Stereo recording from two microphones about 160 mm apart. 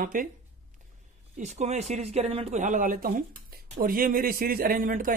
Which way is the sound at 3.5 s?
70° right (ahead or behind).